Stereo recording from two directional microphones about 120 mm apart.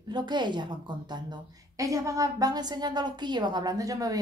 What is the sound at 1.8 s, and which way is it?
A woman's voice, 25° right (ahead or behind).